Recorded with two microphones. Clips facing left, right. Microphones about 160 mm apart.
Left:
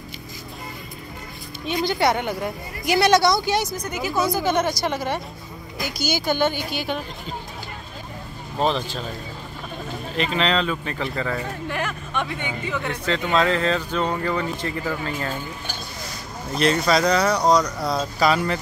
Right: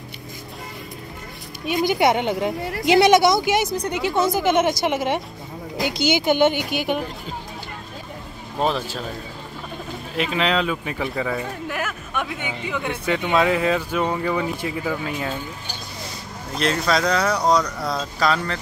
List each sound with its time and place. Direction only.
1.9 s a woman's voice: 20° right (ahead or behind)
2.6 s speech: 75° right (ahead or behind)
2.9 s a woman's voice: 20° right (ahead or behind)
3.7 s a woman's voice: 30° right (ahead or behind)
4.3 s a woman's voice: 20° right (ahead or behind)
8.5 s speech: 5° right (ahead or behind)
10.1 s speech: 5° right (ahead or behind)
16.5 s speech: centre (ahead or behind)